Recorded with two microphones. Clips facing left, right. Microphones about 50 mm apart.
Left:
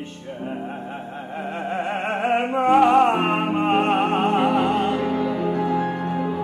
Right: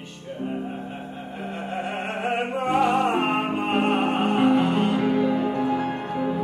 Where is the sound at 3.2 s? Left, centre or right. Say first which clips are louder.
Left 3 dB; centre.